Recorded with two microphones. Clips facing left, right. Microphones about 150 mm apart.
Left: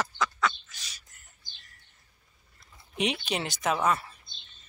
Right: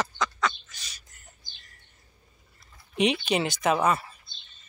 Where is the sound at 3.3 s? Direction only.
5° right (ahead or behind).